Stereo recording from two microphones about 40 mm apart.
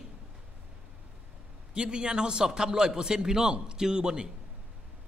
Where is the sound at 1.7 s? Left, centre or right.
Right.